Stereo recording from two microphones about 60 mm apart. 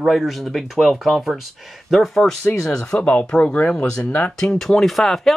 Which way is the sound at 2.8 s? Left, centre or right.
Left.